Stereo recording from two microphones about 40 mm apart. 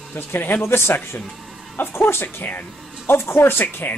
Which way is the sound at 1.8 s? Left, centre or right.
Left.